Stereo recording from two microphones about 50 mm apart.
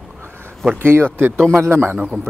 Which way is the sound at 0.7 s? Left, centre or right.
Right.